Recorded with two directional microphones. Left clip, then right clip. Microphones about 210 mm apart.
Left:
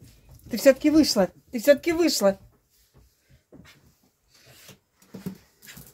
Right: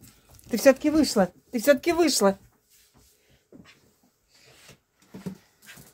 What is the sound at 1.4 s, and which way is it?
Speech, 15° right (ahead or behind).